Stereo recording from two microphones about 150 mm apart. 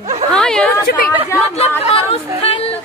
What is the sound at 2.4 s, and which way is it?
Speech, 40° left (ahead or behind).